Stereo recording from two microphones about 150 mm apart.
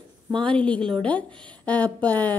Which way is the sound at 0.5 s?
10° left (ahead or behind).